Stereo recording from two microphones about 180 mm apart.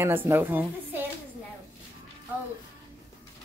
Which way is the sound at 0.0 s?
10° right (ahead or behind).